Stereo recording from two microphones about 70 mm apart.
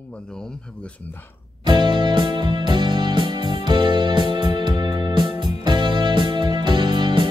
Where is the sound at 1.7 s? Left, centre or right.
Right.